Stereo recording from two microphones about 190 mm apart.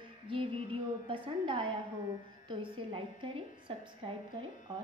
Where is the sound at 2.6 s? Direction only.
25° right (ahead or behind).